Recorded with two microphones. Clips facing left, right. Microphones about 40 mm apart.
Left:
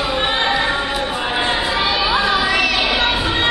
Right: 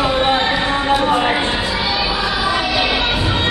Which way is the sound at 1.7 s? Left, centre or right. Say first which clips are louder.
Left 2 dB; left.